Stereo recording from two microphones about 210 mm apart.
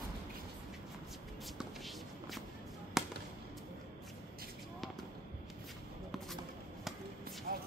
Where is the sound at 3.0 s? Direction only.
Centre (ahead or behind).